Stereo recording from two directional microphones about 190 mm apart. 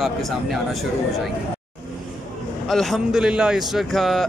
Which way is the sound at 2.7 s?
Centre (ahead or behind).